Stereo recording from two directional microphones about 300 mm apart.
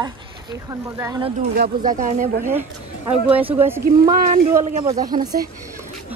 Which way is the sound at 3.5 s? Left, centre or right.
Centre.